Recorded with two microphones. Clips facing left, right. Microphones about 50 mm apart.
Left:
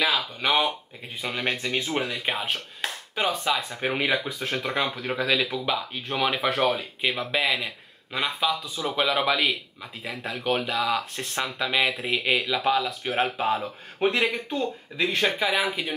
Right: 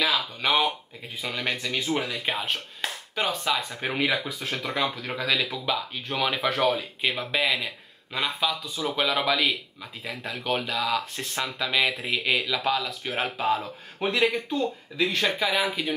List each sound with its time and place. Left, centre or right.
0.1 s speech: centre
1.3 s speech: centre
15.3 s speech: centre